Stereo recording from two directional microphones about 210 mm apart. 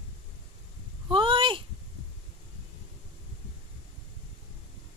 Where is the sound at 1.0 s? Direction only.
25° right (ahead or behind).